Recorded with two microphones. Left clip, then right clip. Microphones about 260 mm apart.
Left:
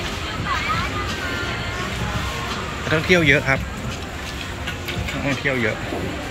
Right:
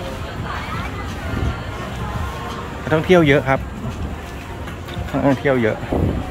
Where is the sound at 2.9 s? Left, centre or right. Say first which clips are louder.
Right 3 dB; centre.